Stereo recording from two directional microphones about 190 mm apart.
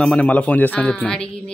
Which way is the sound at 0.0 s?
5° left (ahead or behind).